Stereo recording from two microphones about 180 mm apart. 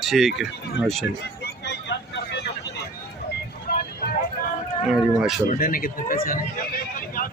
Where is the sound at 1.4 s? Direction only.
70° left (ahead or behind).